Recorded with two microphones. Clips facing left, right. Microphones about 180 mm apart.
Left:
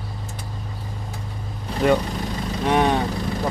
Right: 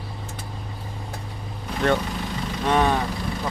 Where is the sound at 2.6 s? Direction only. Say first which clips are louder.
Left 1 dB; 15° left (ahead or behind).